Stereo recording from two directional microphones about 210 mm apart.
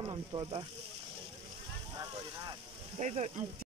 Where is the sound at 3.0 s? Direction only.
35° right (ahead or behind).